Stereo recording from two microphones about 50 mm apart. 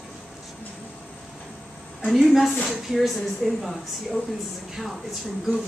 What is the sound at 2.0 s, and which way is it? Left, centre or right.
Speech, centre.